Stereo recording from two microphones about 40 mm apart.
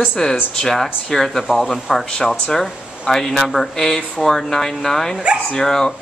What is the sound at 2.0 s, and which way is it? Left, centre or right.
Speech, centre.